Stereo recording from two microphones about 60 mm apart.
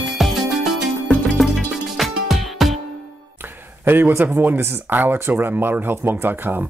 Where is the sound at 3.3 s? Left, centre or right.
Right.